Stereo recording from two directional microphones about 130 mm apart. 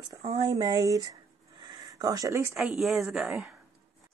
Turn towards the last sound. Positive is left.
turn(degrees=-5)  # may be behind; listen again after turning